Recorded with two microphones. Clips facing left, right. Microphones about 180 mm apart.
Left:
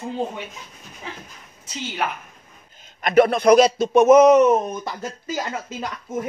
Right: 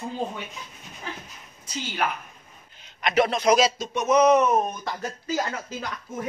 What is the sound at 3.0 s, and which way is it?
A man's voice, 55° left (ahead or behind).